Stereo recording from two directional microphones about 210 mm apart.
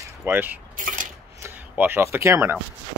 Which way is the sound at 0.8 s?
40° right (ahead or behind).